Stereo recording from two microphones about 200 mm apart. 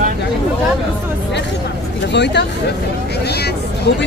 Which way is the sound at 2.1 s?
60° left (ahead or behind).